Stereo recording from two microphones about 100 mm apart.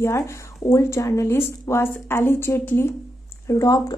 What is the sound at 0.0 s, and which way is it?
A woman's voice, 30° left (ahead or behind).